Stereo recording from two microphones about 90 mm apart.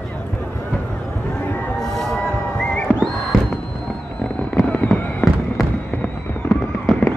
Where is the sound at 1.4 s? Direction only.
20° left (ahead or behind).